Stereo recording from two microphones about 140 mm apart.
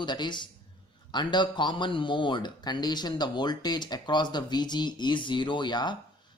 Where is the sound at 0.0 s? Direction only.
30° left (ahead or behind).